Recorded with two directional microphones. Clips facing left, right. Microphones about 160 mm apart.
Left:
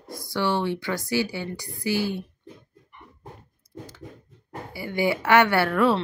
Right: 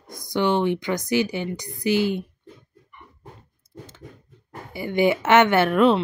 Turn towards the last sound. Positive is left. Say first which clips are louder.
# right 4 dB
turn(degrees=-20)  # may be behind; listen again after turning